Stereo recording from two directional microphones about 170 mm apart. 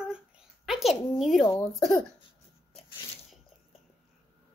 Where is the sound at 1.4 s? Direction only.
20° left (ahead or behind).